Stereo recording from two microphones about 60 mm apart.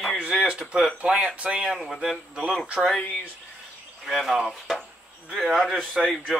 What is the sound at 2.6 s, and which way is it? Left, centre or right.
Speech, centre.